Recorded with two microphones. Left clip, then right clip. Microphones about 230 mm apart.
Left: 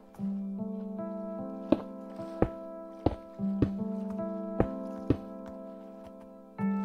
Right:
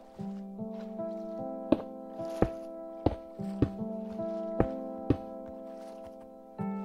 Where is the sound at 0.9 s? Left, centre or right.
Left.